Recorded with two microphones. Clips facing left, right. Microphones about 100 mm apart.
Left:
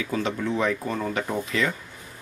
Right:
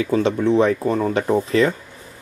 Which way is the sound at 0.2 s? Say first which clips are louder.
Right 8 dB; 30° right (ahead or behind).